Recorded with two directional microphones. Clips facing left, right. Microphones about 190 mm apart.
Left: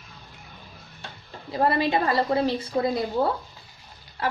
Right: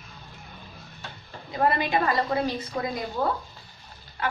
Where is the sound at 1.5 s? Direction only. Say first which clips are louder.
Left 2 dB; 30° left (ahead or behind).